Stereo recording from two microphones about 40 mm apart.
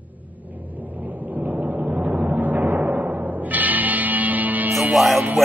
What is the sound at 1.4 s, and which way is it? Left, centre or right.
Timpani, right.